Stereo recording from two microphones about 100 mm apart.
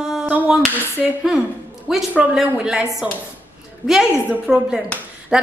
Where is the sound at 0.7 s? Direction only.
20° left (ahead or behind).